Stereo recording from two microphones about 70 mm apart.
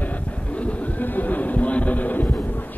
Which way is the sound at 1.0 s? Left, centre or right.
Left.